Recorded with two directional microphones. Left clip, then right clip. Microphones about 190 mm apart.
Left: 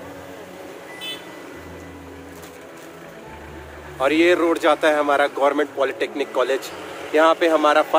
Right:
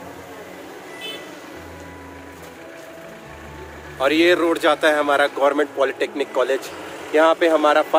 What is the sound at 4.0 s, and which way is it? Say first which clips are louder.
Speech: right 1 dB; centre (ahead or behind).